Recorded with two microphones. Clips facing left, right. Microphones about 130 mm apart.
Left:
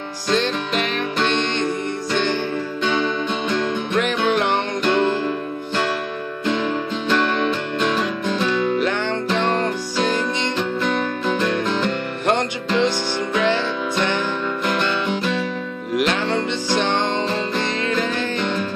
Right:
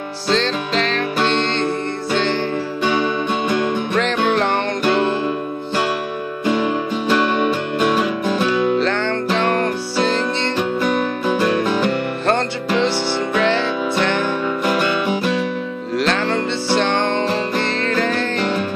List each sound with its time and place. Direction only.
0.3 s music: 15° left (ahead or behind)
2.8 s music: 10° right (ahead or behind)
4.8 s music: 10° right (ahead or behind)
6.4 s music: 10° right (ahead or behind)
9.4 s music: 55° right (ahead or behind)
10.6 s music: 10° right (ahead or behind)
14.7 s music: 10° right (ahead or behind)
15.9 s music: 15° left (ahead or behind)